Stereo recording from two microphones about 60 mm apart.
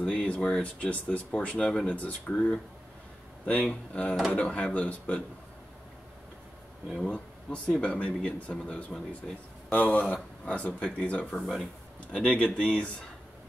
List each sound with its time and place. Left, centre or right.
0.0 s speech: centre
7.0 s speech: centre
11.3 s speech: centre
12.1 s speech: centre